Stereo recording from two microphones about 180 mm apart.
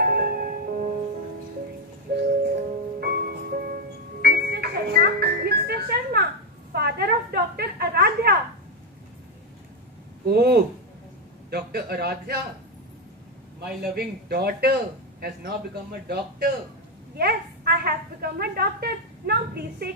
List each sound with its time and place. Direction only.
0.0 s music: 60° right (ahead or behind)
2.1 s music: 60° right (ahead or behind)
6.7 s a sound: 60° right (ahead or behind)
10.2 s a man's voice: 60° right (ahead or behind)
13.6 s a man's voice: 60° right (ahead or behind)